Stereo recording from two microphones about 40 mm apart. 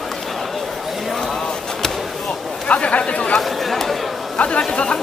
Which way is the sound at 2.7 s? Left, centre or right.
Left.